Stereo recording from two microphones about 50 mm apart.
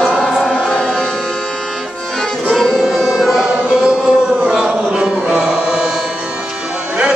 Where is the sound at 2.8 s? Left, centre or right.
Centre.